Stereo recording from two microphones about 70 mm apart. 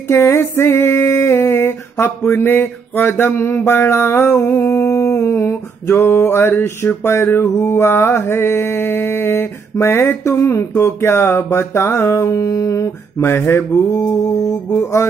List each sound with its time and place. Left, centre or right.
0.1 s a sound: left
3.3 s mantra: left
4.6 s a sound: left
6.9 s mantra: left
10.8 s music: left
13.2 s mantra: left